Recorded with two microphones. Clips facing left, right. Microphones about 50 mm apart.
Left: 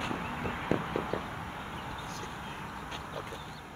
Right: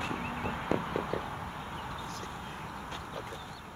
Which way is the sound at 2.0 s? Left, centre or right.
Left.